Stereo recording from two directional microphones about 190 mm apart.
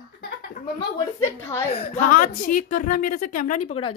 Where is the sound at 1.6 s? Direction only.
30° left (ahead or behind).